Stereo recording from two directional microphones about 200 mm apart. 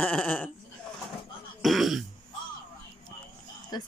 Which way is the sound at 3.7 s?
20° left (ahead or behind).